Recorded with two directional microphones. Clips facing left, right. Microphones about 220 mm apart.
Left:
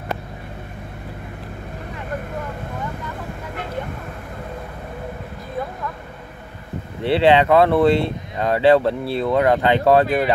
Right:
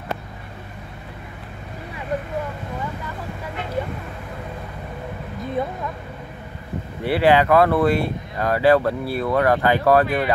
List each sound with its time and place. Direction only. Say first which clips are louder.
7.0 s speech: left 2 dB; 25° left (ahead or behind)